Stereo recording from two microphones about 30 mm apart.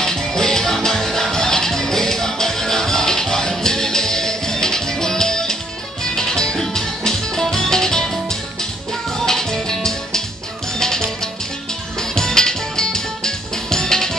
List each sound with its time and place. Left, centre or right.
0.0 s music: centre
9.2 s music: centre
12.2 s music: centre